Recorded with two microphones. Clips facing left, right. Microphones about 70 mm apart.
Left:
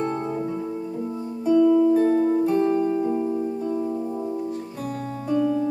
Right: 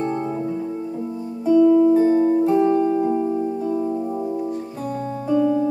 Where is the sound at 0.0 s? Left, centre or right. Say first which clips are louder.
Right 2 dB; centre.